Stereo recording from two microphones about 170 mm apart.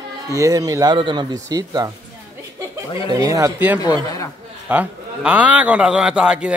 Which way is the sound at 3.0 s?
20° right (ahead or behind).